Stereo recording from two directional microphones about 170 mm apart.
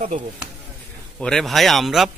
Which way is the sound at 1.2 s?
5° left (ahead or behind).